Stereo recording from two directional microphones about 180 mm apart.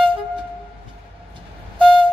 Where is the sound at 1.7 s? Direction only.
25° right (ahead or behind).